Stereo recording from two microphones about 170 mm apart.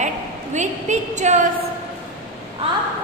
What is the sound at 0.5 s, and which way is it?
Speech, 45° right (ahead or behind).